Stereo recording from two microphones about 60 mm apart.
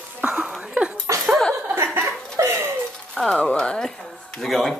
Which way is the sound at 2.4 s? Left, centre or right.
Right.